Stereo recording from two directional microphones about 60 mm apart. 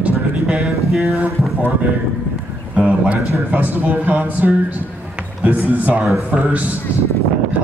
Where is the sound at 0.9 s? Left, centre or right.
Centre.